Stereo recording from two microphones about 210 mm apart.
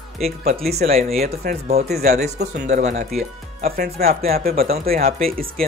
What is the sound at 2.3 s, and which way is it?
Speech, 30° right (ahead or behind).